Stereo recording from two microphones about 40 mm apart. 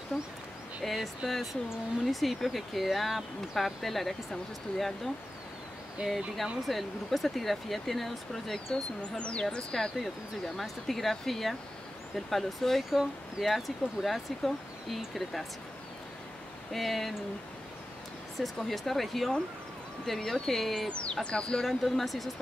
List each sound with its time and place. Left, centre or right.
0.1 s speech: centre
6.0 s speech: centre
9.2 s speech: left
9.9 s speech: centre
12.9 s speech: centre
16.7 s speech: centre
18.6 s speech: centre
20.9 s speech: left
21.6 s speech: centre